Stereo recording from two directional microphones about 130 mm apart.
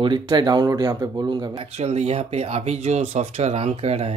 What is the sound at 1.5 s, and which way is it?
Speech, 55° right (ahead or behind).